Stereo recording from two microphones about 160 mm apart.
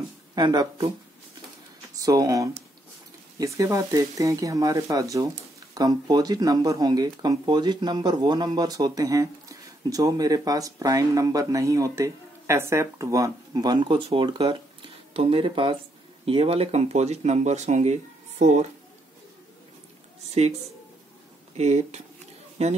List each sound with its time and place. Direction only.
0.3 s speech: 25° right (ahead or behind)
2.0 s speech: 20° right (ahead or behind); by 18.7 s 45° right (ahead or behind)
20.2 s speech: 40° right (ahead or behind)
21.5 s speech: 45° right (ahead or behind)